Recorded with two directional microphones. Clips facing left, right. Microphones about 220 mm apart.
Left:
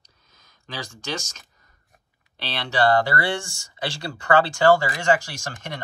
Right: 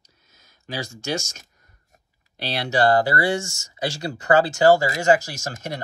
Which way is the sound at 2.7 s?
40° right (ahead or behind).